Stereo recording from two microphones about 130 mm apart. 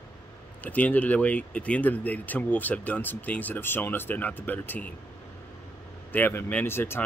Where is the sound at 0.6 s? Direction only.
10° left (ahead or behind).